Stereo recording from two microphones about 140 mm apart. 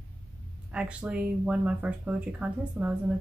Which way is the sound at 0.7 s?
10° right (ahead or behind).